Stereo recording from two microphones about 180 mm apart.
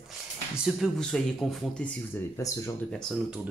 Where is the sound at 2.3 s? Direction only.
15° left (ahead or behind).